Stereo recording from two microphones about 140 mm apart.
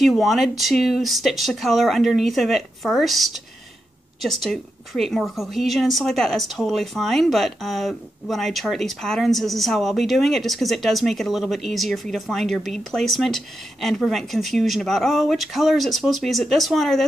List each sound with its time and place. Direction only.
0.0 s a woman's voice: centre (ahead or behind)